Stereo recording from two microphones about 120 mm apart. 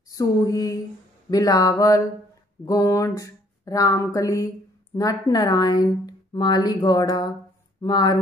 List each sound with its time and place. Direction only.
0.1 s speech: 30° left (ahead or behind)